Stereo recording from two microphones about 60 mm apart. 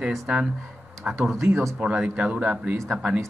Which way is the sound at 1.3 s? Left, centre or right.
Right.